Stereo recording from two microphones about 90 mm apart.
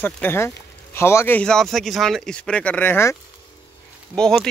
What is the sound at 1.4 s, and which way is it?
Speech, 5° left (ahead or behind).